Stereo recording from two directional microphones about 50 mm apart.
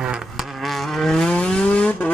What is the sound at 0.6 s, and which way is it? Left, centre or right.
Vehicle, centre.